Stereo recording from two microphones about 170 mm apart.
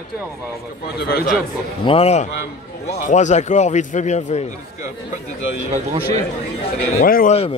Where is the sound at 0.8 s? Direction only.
70° left (ahead or behind).